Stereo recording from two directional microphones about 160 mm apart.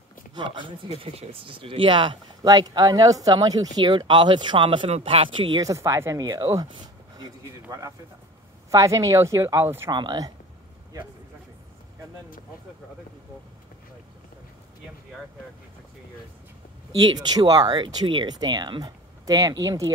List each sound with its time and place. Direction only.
0.3 s speech: 30° right (ahead or behind)
6.7 s a sound: 25° right (ahead or behind)
8.6 s speech: 20° right (ahead or behind)
9.8 s speech: 25° right (ahead or behind)
17.0 s speech: 25° right (ahead or behind)